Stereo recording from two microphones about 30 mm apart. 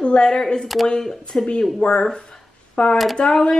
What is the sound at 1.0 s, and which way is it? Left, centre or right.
Speech, centre.